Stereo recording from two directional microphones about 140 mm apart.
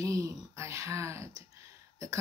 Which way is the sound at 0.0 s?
25° right (ahead or behind).